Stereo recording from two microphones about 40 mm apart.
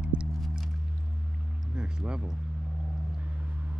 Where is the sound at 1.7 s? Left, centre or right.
Right.